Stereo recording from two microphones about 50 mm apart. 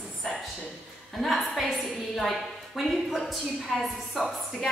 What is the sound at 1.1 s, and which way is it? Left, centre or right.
A woman's voice, centre.